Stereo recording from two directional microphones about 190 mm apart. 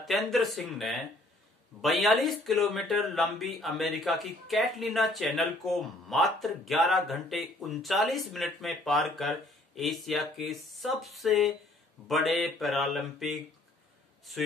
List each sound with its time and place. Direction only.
0.0 s speech: centre (ahead or behind)